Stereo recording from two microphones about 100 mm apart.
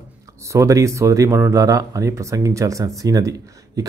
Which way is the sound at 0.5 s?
30° right (ahead or behind).